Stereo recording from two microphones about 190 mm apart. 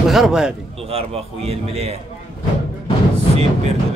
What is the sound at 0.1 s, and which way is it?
Speech, centre (ahead or behind).